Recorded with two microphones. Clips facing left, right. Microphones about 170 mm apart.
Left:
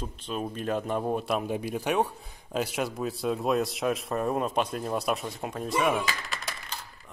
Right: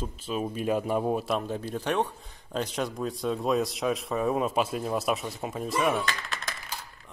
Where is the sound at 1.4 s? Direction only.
15° left (ahead or behind).